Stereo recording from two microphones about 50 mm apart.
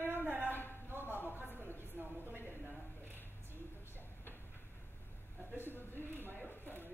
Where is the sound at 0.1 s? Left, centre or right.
Right.